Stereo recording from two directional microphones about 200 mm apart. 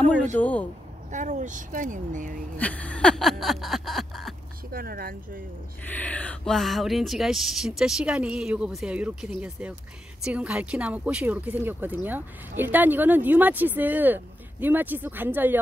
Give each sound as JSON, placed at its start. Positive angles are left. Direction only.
{"t": 0.4, "sound": "speech", "side_deg": 5}
{"t": 1.1, "sound": "speech", "side_deg": -35}
{"t": 2.5, "sound": "a sound", "side_deg": 5}
{"t": 4.7, "sound": "speech", "side_deg": -45}
{"t": 5.9, "sound": "speech", "side_deg": 5}